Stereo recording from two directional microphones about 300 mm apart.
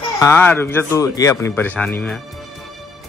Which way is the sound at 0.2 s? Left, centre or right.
Centre.